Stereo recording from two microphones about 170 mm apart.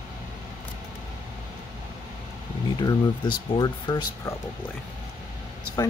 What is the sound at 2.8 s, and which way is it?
Speech, 25° left (ahead or behind).